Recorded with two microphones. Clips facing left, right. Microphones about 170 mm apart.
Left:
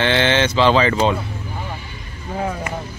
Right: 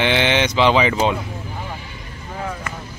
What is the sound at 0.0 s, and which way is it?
Speech, 15° right (ahead or behind).